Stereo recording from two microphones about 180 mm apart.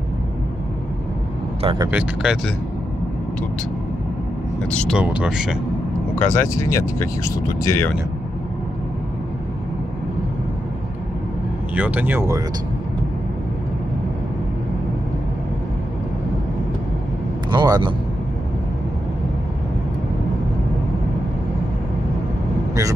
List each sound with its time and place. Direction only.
1.6 s speech: 30° right (ahead or behind)
1.9 s speech: 5° right (ahead or behind)
4.6 s speech: 5° left (ahead or behind)
4.9 s speech: 5° right (ahead or behind)
6.1 s speech: 15° left (ahead or behind)
11.7 s speech: 10° right (ahead or behind)
17.5 s speech: 25° right (ahead or behind)